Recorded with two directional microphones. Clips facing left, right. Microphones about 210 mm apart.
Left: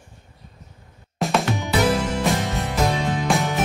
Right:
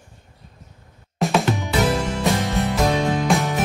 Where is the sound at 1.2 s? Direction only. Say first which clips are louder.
Right 2 dB; centre (ahead or behind).